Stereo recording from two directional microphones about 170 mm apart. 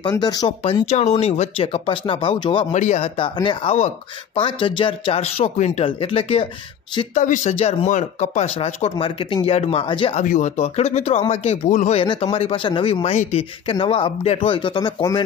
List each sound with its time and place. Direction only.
0.0 s speech: 25° left (ahead or behind)
0.8 s speech: 40° left (ahead or behind)
2.7 s speech: 45° left (ahead or behind)
7.2 s speech: 45° left (ahead or behind)
10.2 s speech: 45° left (ahead or behind)
12.0 s speech: 30° left (ahead or behind)